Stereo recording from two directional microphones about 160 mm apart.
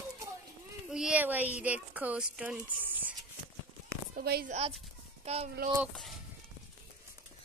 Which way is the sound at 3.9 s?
80° right.